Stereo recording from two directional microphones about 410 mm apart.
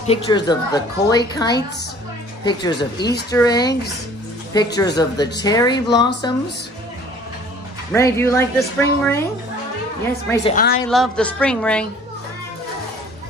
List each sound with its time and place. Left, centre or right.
0.0 s a woman's voice: centre
4.7 s a woman's voice: centre
7.9 s a woman's voice: centre
10.4 s a woman's voice: centre
10.9 s a woman's voice: centre